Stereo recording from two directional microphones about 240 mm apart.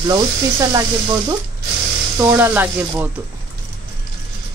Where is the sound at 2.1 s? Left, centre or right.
Centre.